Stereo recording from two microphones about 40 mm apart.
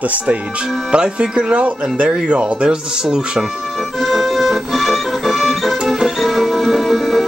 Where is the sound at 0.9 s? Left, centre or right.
Right.